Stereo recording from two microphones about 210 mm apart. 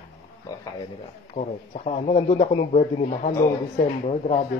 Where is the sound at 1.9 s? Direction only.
30° left (ahead or behind).